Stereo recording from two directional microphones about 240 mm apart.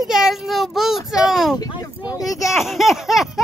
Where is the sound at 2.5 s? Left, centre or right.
Centre.